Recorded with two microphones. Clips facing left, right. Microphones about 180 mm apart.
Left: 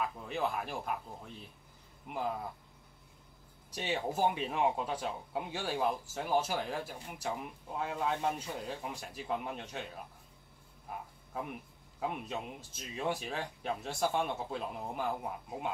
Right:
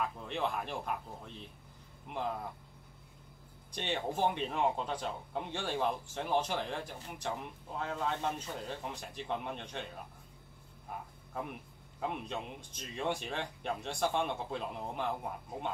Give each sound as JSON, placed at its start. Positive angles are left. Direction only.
{"t": 0.0, "sound": "speech", "side_deg": 5}
{"t": 3.7, "sound": "speech", "side_deg": 5}
{"t": 12.0, "sound": "speech", "side_deg": 5}